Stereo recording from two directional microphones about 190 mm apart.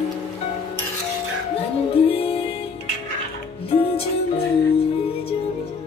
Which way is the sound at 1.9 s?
30° left (ahead or behind).